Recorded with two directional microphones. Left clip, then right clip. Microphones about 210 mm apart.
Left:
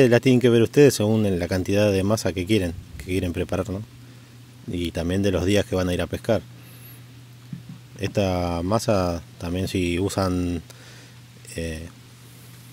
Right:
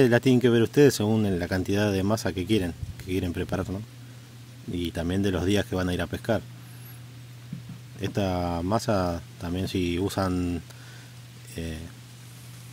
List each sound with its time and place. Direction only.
0.0 s speech: 25° left (ahead or behind)
8.0 s speech: 25° left (ahead or behind)